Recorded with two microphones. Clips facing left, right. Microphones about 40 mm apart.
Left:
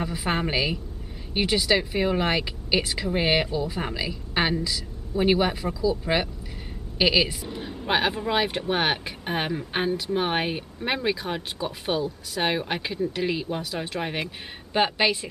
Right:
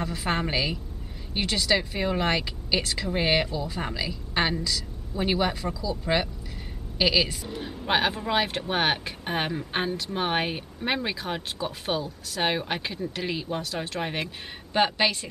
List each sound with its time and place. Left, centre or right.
0.0 s speech: centre